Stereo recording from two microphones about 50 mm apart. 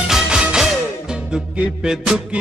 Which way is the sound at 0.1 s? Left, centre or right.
Centre.